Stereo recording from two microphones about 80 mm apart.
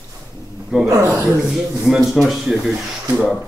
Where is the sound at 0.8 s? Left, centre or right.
Right.